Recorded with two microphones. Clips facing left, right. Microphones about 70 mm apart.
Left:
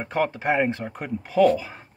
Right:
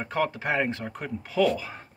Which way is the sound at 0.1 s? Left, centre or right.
Centre.